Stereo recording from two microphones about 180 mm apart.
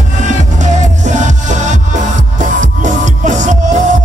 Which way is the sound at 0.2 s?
40° right (ahead or behind).